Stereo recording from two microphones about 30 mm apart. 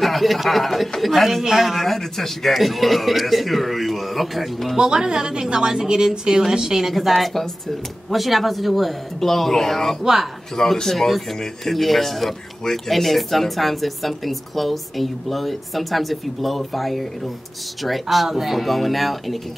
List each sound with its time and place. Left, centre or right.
0.0 s speech: centre
1.9 s a man's voice: centre
4.7 s a woman's voice: right
6.9 s a man's voice: centre
18.1 s speech: centre